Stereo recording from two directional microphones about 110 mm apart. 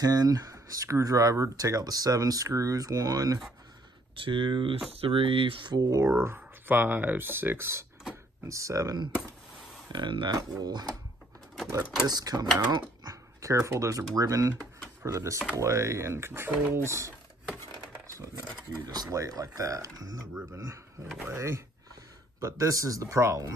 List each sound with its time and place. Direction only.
0.0 s speech: 35° right (ahead or behind)
4.2 s speech: 50° right (ahead or behind)
5.9 s speech: 25° right (ahead or behind)
12.1 s speech: 35° right (ahead or behind)
19.0 s speech: 30° right (ahead or behind)